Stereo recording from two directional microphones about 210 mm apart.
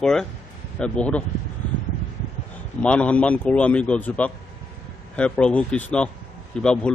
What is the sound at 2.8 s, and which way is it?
A man's voice, 5° left (ahead or behind).